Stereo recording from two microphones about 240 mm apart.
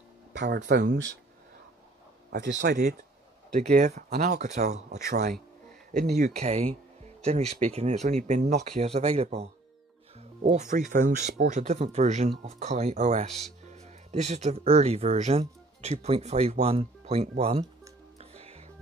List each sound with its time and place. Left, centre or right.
0.3 s speech: right
2.3 s speech: right
3.5 s speech: right
6.3 s speech: right
18.1 s music: right